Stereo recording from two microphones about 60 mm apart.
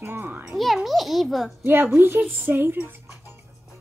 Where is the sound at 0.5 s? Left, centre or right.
Centre.